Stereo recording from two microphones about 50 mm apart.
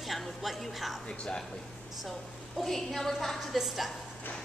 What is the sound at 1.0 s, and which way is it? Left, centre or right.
Speech, left.